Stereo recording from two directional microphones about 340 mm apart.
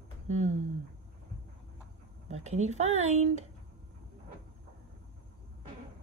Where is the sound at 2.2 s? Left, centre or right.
Centre.